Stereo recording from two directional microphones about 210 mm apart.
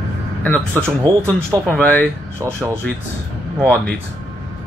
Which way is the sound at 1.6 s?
10° left (ahead or behind).